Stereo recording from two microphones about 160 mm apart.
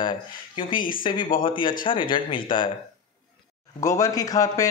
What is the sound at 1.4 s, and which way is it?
A man's voice, 30° left (ahead or behind).